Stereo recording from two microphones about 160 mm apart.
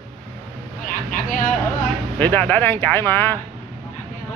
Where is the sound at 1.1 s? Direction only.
55° left (ahead or behind).